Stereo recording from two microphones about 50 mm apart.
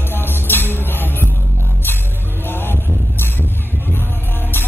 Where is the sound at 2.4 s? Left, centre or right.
Left.